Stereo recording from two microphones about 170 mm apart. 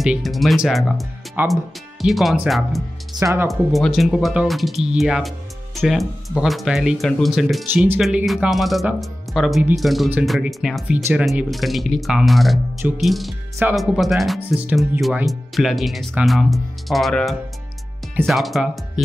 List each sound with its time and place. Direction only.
0.0 s speech: centre (ahead or behind)
3.2 s speech: 20° right (ahead or behind)
3.4 s speech: centre (ahead or behind)